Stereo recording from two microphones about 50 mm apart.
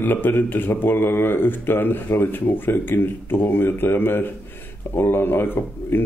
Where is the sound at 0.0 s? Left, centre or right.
Left.